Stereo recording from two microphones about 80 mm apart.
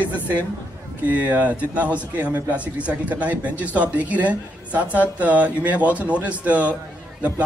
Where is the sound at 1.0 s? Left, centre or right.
Centre.